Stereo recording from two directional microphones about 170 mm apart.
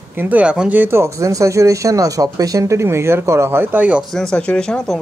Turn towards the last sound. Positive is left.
turn(degrees=5)  # may be behind; listen again after turning